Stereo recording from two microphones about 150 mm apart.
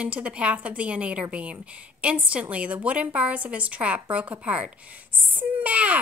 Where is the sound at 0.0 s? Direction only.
10° right (ahead or behind).